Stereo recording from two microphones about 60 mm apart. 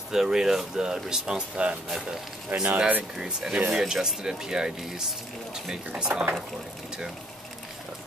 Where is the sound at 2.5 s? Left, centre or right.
Right.